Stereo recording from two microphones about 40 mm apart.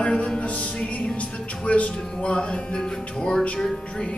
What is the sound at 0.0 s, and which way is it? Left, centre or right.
Music, left.